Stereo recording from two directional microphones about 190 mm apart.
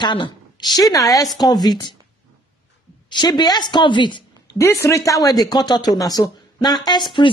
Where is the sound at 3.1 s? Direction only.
20° left (ahead or behind).